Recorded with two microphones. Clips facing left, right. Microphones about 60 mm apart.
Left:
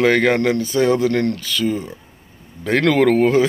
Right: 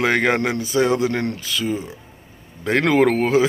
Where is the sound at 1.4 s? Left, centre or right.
Centre.